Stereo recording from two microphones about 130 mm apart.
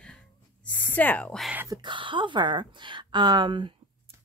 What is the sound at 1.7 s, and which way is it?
Speech, 35° right (ahead or behind).